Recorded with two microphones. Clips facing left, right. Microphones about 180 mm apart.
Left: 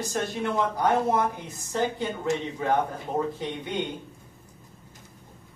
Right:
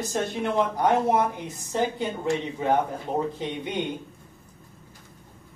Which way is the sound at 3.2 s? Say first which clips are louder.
Left 1 dB; 20° right (ahead or behind).